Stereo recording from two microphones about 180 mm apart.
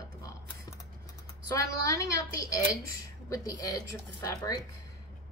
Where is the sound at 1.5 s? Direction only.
20° left (ahead or behind).